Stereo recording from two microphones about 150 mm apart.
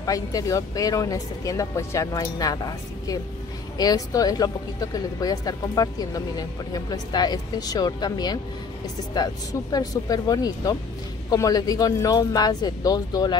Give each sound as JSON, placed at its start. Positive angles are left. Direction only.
{"t": 0.0, "sound": "speech", "side_deg": 25}